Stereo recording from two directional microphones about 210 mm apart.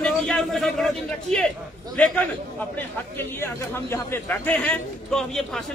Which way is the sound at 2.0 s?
5° left (ahead or behind).